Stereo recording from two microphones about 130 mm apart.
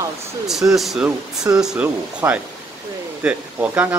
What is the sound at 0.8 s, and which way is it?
Speech, centre (ahead or behind).